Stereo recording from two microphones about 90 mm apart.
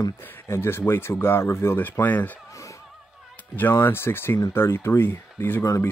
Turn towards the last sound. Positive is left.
turn(degrees=40)  # may be behind; listen again after turning